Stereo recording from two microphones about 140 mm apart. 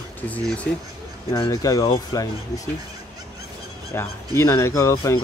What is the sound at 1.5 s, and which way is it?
Speech, 25° left (ahead or behind).